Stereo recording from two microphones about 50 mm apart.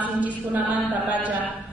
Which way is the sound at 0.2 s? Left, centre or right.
Right.